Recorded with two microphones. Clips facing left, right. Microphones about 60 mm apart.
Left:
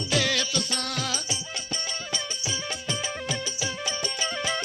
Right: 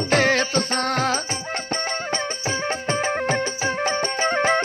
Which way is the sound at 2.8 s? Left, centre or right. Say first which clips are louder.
Right 10 dB; right.